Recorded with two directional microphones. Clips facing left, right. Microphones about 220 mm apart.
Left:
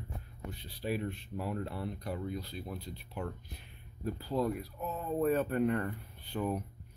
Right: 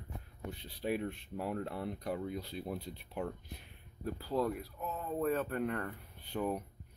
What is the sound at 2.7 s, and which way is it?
Speech, 10° right (ahead or behind).